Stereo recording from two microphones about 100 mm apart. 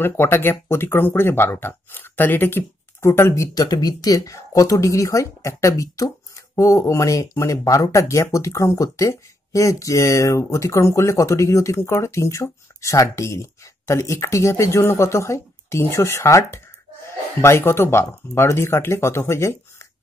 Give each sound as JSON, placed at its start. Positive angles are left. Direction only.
{"t": 0.0, "sound": "speech", "side_deg": 20}
{"t": 3.5, "sound": "speech", "side_deg": 40}